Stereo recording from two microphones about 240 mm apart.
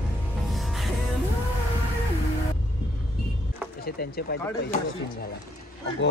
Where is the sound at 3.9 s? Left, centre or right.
Left.